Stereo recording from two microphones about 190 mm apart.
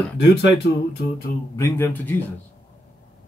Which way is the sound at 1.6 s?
10° left (ahead or behind).